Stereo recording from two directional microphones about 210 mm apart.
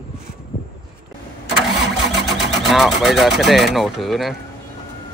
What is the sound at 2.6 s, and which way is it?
Speech, centre (ahead or behind).